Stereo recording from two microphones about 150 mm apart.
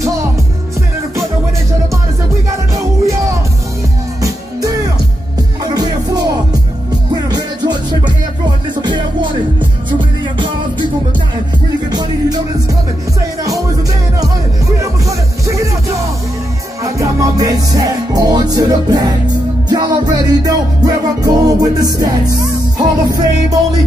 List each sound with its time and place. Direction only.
4.2 s music: 25° right (ahead or behind)
11.9 s music: 25° right (ahead or behind)
14.8 s music: 20° right (ahead or behind)
16.8 s music: 20° right (ahead or behind)